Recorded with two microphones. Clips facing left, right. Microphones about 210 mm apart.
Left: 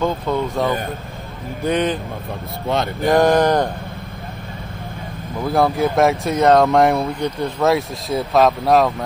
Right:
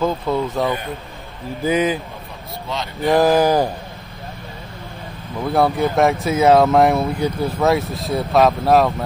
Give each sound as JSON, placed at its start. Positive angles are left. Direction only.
{"t": 0.0, "sound": "speech", "side_deg": -5}
{"t": 2.7, "sound": "speech", "side_deg": 55}
{"t": 3.1, "sound": "speech", "side_deg": -5}
{"t": 5.5, "sound": "speech", "side_deg": 0}